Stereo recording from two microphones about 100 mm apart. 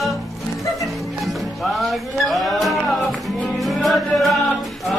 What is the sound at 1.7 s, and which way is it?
Music, centre (ahead or behind).